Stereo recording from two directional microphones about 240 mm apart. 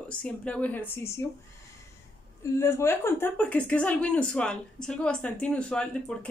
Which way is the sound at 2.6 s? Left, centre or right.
Centre.